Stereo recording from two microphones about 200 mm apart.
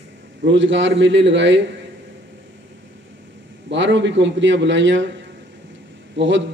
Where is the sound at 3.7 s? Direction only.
65° right (ahead or behind).